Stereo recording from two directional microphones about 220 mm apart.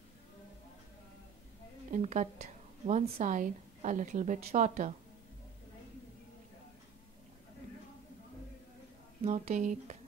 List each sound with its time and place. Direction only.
1.9 s a woman's voice: 35° right (ahead or behind)
9.2 s a woman's voice: 30° right (ahead or behind)